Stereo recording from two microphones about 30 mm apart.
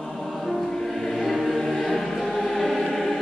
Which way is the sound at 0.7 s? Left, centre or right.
Centre.